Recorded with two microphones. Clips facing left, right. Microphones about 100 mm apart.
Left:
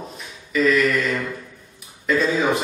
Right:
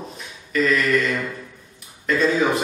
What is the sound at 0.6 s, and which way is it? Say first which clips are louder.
Speech: left 1 dB; centre (ahead or behind).